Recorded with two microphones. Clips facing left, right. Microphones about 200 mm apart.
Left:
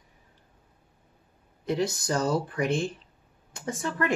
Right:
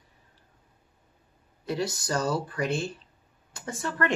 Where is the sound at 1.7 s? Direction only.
20° left (ahead or behind).